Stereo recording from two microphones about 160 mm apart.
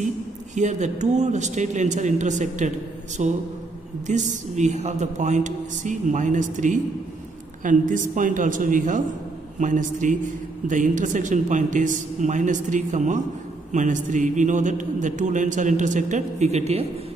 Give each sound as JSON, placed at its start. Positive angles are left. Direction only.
{"t": 0.6, "sound": "a man's voice", "side_deg": -45}